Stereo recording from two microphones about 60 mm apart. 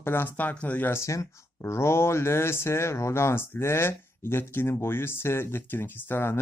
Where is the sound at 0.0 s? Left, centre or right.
Left.